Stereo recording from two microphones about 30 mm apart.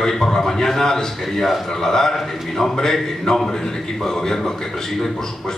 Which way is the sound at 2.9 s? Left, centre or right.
Centre.